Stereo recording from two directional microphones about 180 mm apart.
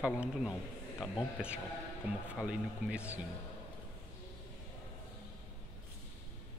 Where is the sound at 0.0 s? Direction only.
5° right (ahead or behind).